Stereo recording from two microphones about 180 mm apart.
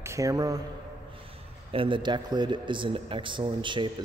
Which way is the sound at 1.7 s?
30° right (ahead or behind).